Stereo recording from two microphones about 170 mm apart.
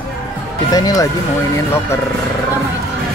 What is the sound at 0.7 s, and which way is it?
Speech, 20° left (ahead or behind).